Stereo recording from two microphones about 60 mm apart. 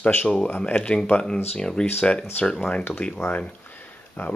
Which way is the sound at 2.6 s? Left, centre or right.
Left.